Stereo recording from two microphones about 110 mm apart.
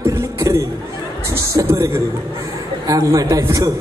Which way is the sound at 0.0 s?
30° right (ahead or behind).